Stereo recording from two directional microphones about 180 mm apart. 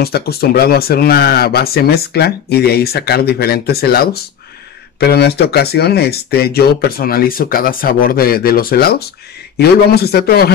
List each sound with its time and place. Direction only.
0.0 s speech: 60° left (ahead or behind)